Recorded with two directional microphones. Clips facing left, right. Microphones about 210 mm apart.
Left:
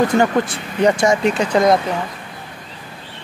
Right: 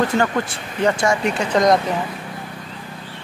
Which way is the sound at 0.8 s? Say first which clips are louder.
Left 4 dB; 15° left (ahead or behind).